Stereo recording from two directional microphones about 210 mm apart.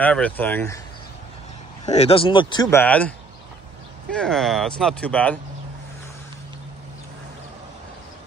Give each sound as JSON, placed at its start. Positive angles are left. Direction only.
{"t": 0.0, "sound": "speech", "side_deg": 5}
{"t": 1.9, "sound": "speech", "side_deg": 30}